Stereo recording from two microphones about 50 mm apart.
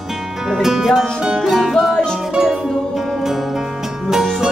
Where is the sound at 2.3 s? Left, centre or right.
Centre.